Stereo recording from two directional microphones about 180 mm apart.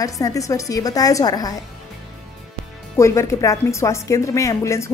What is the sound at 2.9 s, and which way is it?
A woman's voice, 15° left (ahead or behind).